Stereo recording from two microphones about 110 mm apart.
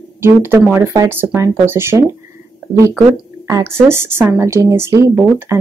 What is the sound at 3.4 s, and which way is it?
A woman's voice, 25° right (ahead or behind).